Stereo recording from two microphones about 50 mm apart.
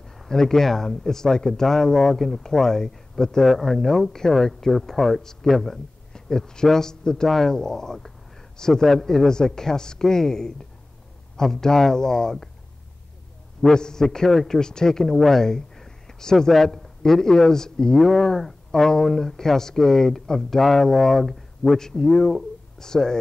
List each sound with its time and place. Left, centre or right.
0.0 s speech: centre
13.7 s speech: centre
14.6 s speech: centre